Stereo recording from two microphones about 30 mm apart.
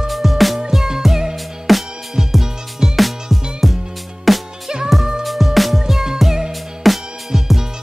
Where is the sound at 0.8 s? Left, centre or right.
Centre.